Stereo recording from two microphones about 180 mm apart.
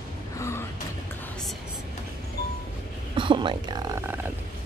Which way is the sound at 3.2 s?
25° right (ahead or behind).